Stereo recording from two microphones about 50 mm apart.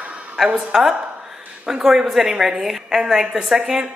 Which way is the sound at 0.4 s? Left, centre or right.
Centre.